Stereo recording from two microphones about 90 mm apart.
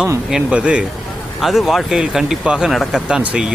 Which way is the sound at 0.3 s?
10° right (ahead or behind).